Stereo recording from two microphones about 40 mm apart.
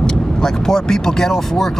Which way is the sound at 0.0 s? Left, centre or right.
Centre.